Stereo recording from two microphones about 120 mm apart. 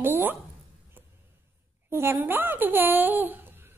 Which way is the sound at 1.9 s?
20° right (ahead or behind).